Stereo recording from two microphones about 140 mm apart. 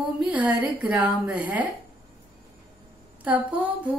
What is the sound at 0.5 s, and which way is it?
A woman's voice, 10° right (ahead or behind).